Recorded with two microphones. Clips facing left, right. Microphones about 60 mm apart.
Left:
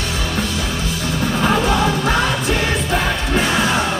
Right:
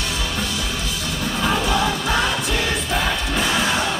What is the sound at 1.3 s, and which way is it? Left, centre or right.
Music, left.